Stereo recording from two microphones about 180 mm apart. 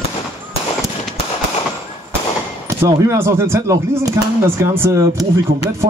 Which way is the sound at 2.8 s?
15° right (ahead or behind).